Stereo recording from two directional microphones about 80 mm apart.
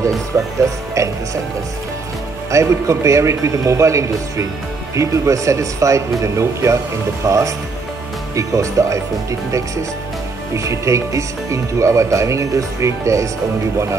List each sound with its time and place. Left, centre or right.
0.7 s speech: right
2.5 s speech: right
10.5 s speech: right